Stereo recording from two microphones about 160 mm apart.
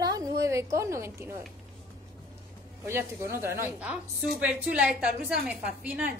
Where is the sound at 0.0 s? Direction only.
25° right (ahead or behind).